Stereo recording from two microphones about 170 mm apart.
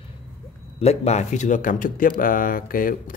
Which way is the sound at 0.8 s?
40° left (ahead or behind).